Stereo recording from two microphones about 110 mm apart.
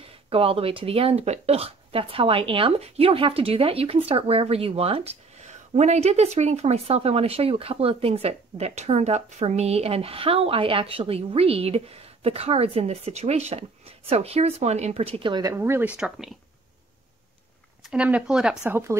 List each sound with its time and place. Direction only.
0.0 s speech: 60° right (ahead or behind)
15.5 s speech: 20° right (ahead or behind); by 16.3 s 5° right (ahead or behind)
17.8 s speech: 10° right (ahead or behind)
18.7 s a woman's voice: 20° right (ahead or behind)